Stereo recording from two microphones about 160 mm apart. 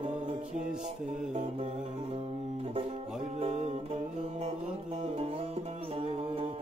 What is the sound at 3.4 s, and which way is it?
Music, 40° right (ahead or behind).